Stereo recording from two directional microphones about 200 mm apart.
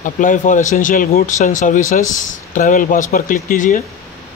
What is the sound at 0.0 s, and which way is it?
Speech, 40° left (ahead or behind).